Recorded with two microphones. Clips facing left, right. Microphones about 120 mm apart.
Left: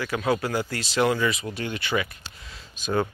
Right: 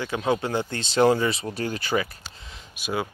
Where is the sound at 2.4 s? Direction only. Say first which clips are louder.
Left 1 dB; 20° right (ahead or behind).